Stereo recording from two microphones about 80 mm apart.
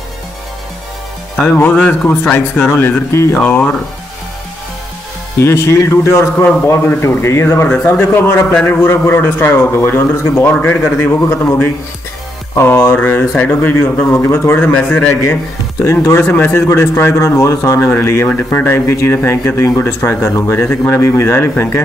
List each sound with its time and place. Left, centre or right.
1.4 s a man's voice: left
2.6 s speech: left
3.5 s speech: centre
5.4 s speech: left
7.6 s a man's voice: left
12.5 s a man's voice: left